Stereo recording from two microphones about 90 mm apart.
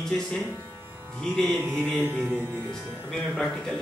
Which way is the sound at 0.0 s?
10° left (ahead or behind).